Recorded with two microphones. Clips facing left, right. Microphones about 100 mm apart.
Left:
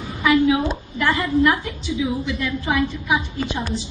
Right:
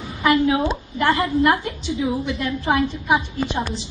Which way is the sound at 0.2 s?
35° right (ahead or behind).